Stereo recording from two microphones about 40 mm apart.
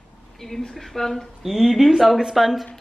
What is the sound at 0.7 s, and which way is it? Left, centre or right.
Speech, centre.